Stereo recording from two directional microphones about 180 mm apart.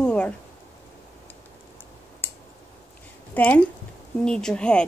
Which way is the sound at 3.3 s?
10° left (ahead or behind).